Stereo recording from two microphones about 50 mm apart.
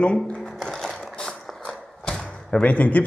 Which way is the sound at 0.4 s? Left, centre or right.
Centre.